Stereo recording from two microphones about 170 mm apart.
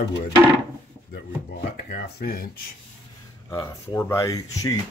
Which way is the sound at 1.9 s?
60° left (ahead or behind).